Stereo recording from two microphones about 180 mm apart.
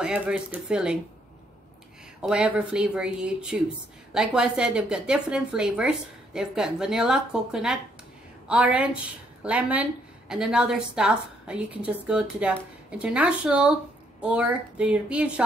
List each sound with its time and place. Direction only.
0.0 s a woman's voice: 5° right (ahead or behind)
2.2 s a woman's voice: 5° right (ahead or behind)